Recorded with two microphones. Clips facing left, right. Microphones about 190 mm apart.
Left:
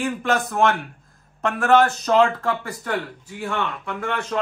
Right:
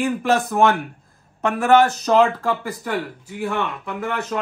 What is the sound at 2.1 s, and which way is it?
Speech, 10° right (ahead or behind).